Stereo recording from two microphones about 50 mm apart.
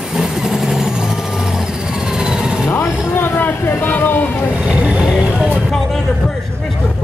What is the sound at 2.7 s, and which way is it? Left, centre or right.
Vehicle, left.